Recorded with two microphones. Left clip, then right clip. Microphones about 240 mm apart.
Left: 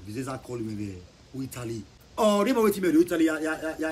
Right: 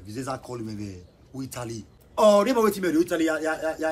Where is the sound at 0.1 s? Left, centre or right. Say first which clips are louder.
Right 2 dB; centre.